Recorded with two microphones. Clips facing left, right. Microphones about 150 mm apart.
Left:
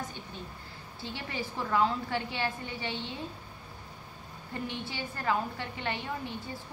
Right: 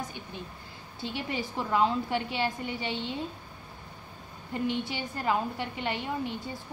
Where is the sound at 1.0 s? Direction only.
15° right (ahead or behind).